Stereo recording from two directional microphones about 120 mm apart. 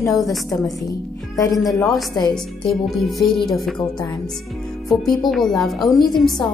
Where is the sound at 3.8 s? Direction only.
30° left (ahead or behind).